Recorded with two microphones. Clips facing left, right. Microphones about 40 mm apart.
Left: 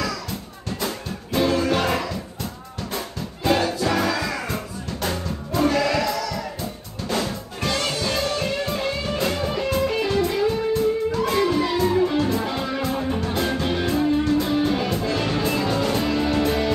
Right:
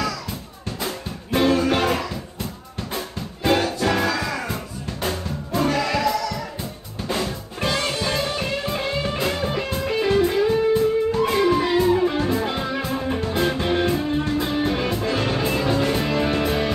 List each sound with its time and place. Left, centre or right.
1.3 s music: right
3.5 s music: centre
4.1 s music: centre; by 16.4 s right